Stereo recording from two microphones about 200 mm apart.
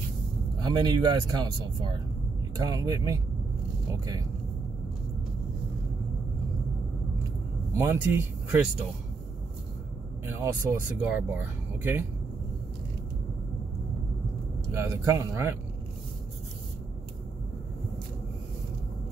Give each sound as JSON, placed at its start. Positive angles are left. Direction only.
{"t": 0.6, "sound": "speech", "side_deg": -20}
{"t": 7.7, "sound": "speech", "side_deg": -10}
{"t": 10.2, "sound": "speech", "side_deg": -15}
{"t": 14.7, "sound": "speech", "side_deg": -15}